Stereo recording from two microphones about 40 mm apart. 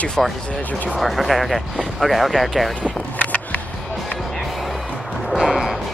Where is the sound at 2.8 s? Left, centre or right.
Left.